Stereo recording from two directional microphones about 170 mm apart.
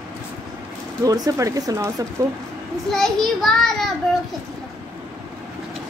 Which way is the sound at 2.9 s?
Centre (ahead or behind).